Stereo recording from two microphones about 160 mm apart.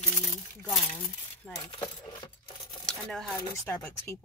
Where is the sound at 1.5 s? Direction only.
5° left (ahead or behind).